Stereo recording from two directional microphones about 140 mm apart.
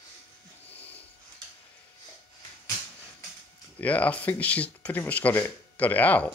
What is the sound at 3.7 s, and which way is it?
Speech, 10° left (ahead or behind).